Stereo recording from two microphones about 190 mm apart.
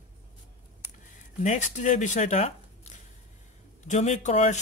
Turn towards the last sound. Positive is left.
turn(degrees=35)  # may be behind; listen again after turning